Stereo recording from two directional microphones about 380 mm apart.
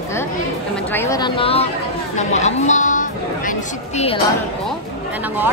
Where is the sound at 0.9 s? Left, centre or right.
Centre.